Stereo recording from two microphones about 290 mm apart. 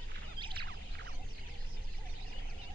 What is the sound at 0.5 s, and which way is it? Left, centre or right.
Whale vocalization, right.